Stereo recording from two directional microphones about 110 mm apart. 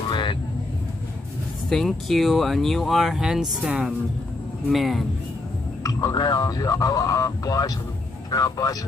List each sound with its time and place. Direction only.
0.1 s vehicle: 45° left (ahead or behind)
1.7 s speech: 5° left (ahead or behind)
5.9 s speech: 40° left (ahead or behind)